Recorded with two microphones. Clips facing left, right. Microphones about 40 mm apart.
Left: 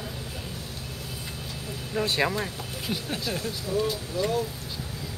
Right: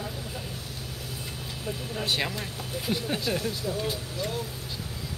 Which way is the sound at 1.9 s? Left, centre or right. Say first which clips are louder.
Left 5 dB; left.